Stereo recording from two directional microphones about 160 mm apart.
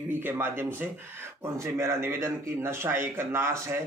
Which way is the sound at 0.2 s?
15° right (ahead or behind).